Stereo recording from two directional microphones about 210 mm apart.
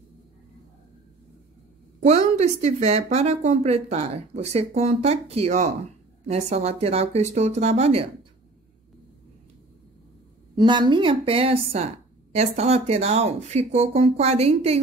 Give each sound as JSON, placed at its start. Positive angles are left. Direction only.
{"t": 2.0, "sound": "a woman's voice", "side_deg": -30}
{"t": 10.5, "sound": "a woman's voice", "side_deg": -20}